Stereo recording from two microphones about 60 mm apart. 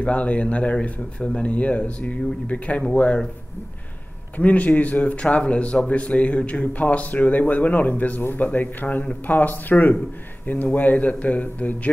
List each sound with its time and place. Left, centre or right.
0.0 s speech: left
4.4 s speech: left